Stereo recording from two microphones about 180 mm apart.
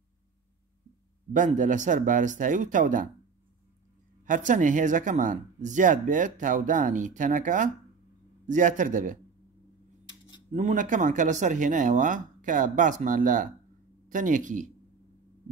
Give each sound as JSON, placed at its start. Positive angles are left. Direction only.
{"t": 1.3, "sound": "speech", "side_deg": -45}
{"t": 4.3, "sound": "speech", "side_deg": -45}
{"t": 10.5, "sound": "speech", "side_deg": -45}